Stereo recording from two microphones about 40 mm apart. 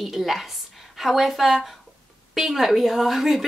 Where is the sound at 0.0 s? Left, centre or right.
Centre.